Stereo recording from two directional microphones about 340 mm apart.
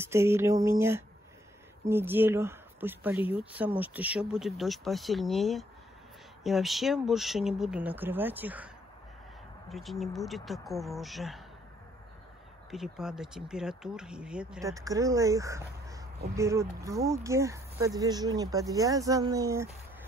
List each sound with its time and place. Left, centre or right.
0.0 s speech: centre
3.2 s speech: centre
3.5 s speech: centre
9.7 s speech: centre
12.7 s speech: centre